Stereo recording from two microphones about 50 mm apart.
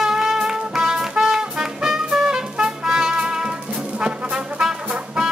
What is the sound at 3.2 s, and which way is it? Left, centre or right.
Brass instrument, centre.